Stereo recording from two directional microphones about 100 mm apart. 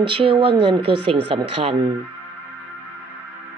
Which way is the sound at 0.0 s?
60° right (ahead or behind).